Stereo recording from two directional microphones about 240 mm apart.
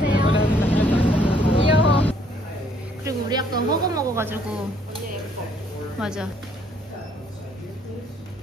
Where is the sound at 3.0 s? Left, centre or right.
Centre.